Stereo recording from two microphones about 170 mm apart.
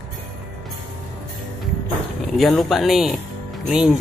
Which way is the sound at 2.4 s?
Centre (ahead or behind).